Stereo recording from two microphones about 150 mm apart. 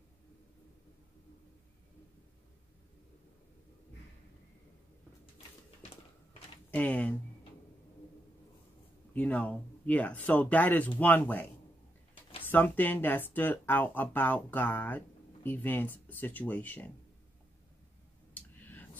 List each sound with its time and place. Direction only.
6.7 s speech: 10° left (ahead or behind)
9.1 s speech: 10° left (ahead or behind)
12.4 s speech: 10° left (ahead or behind)
18.3 s a sound: 10° left (ahead or behind)